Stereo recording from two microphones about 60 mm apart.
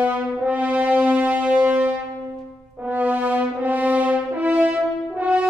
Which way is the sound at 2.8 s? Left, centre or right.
Right.